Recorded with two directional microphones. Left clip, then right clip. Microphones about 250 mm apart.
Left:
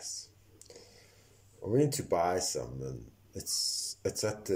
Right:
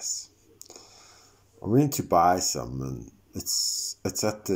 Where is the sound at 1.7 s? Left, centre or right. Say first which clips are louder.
Right 5 dB; centre.